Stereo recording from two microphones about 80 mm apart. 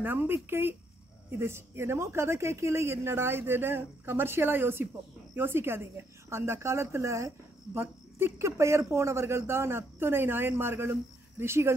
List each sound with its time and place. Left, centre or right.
0.0 s speech: right